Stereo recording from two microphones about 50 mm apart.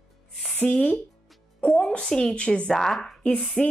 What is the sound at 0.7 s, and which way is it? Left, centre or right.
Speech, centre.